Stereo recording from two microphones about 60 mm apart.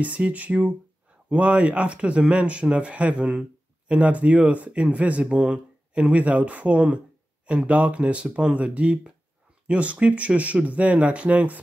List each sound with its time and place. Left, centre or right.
0.0 s speech: right